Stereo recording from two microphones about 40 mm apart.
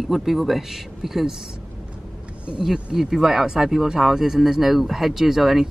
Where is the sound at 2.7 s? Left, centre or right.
Centre.